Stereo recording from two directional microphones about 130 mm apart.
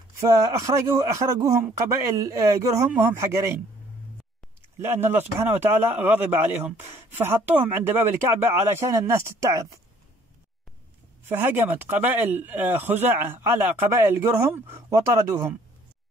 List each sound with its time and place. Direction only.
0.3 s speech: 25° right (ahead or behind)
4.7 s speech: 15° right (ahead or behind)
11.2 s speech: 15° right (ahead or behind)